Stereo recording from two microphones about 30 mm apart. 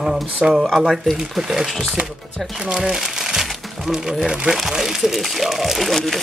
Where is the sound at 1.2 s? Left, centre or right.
Centre.